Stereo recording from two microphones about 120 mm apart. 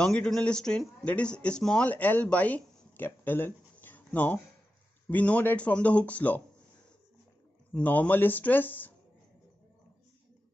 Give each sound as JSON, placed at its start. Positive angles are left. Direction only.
{"t": 0.0, "sound": "speech", "side_deg": 5}
{"t": 7.7, "sound": "speech", "side_deg": 10}